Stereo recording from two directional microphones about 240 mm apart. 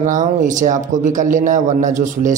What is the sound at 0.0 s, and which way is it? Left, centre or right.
A man's voice, right.